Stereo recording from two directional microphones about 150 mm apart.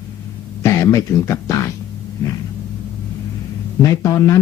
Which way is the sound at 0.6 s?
20° left (ahead or behind).